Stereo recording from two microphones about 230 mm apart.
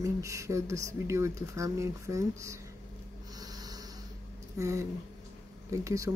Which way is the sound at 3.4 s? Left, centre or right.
Centre.